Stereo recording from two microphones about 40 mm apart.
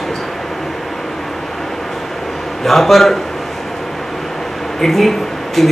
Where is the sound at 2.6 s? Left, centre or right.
Centre.